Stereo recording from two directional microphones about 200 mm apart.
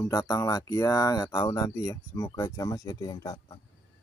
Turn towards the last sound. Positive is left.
turn(degrees=20)  # may be behind; listen again after turning